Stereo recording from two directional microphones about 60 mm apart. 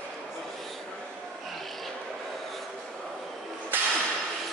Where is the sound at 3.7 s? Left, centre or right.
Right.